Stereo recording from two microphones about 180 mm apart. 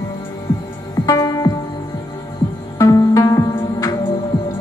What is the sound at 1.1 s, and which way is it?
Music, 20° left (ahead or behind).